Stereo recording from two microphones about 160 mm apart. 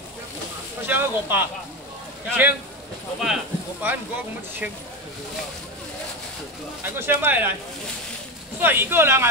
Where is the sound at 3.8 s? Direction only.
10° right (ahead or behind).